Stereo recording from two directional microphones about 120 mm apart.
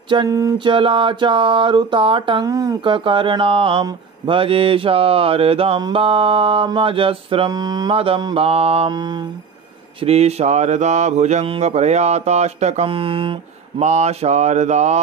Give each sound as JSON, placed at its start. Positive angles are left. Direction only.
{"t": 0.3, "sound": "speech", "side_deg": -25}
{"t": 0.7, "sound": "mantra", "side_deg": -45}
{"t": 2.4, "sound": "speech", "side_deg": -30}
{"t": 2.8, "sound": "mantra", "side_deg": -45}
{"t": 7.5, "sound": "speech", "side_deg": -35}
{"t": 7.9, "sound": "mantra", "side_deg": -50}
{"t": 8.9, "sound": "speech", "side_deg": -40}
{"t": 9.9, "sound": "mantra", "side_deg": -60}
{"t": 12.8, "sound": "mantra", "side_deg": -50}
{"t": 13.8, "sound": "mantra", "side_deg": -65}